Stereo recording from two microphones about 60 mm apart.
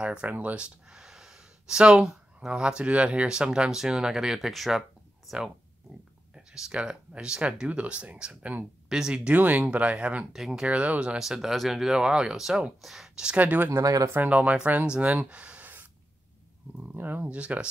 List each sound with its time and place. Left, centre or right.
0.0 s speech: centre
8.8 s speech: centre
10.3 s speech: centre
10.7 s speech: right
11.2 s speech: centre
13.4 s speech: right
16.8 s speech: right
17.3 s speech: centre